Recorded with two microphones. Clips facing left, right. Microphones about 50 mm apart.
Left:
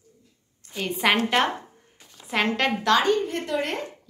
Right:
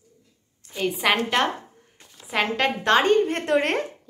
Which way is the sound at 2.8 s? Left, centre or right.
Right.